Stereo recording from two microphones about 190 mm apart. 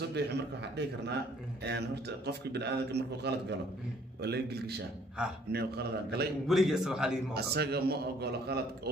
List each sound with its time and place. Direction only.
0.1 s a man's voice: 60° right (ahead or behind)
6.4 s a man's voice: centre (ahead or behind)
7.3 s a man's voice: 55° right (ahead or behind)